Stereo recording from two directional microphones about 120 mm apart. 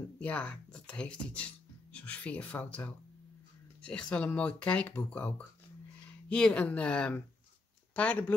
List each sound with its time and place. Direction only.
0.2 s speech: 10° left (ahead or behind)